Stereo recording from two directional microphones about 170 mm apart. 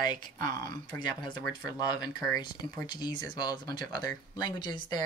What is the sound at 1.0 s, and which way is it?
Speech, 25° left (ahead or behind).